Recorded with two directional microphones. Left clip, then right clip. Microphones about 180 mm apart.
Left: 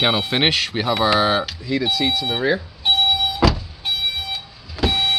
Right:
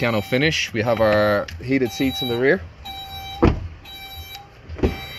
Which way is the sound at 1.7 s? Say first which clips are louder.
Left 4 dB; 45° right (ahead or behind).